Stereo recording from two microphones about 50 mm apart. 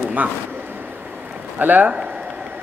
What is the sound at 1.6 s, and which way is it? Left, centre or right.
Speech, right.